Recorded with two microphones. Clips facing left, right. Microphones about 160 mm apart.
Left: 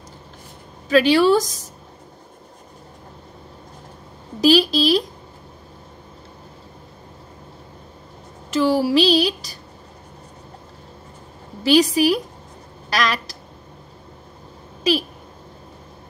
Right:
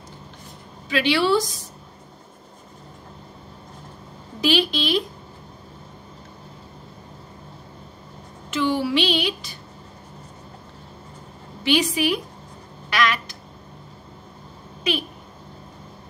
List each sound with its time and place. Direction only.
0.8 s a woman's voice: 40° left (ahead or behind)
4.4 s speech: 40° left (ahead or behind)
8.5 s speech: 35° left (ahead or behind)
11.6 s speech: 40° left (ahead or behind)
14.8 s a sound: 35° left (ahead or behind)